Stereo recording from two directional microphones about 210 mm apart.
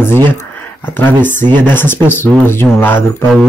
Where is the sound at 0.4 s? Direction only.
10° left (ahead or behind).